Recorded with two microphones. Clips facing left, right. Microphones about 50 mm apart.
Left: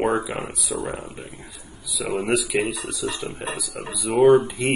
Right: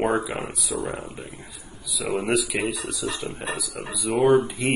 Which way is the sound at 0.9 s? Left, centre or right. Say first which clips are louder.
Left 1 dB; left.